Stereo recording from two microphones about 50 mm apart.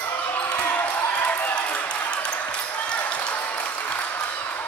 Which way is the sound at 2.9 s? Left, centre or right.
Left.